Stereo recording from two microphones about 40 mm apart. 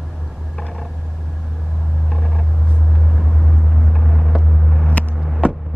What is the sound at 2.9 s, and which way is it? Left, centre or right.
Vehicle, centre.